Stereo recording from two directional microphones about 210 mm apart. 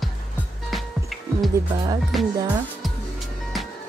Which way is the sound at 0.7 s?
Centre (ahead or behind).